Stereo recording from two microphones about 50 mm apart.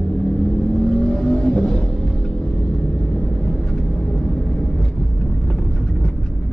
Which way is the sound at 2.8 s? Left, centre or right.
Centre.